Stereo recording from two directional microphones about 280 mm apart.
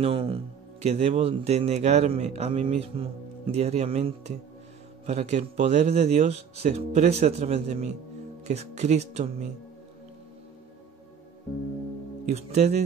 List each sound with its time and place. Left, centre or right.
0.0 s speech: centre
12.3 s speech: right